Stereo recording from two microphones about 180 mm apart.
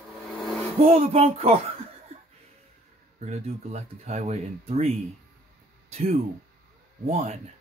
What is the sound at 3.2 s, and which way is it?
Speech, 35° right (ahead or behind).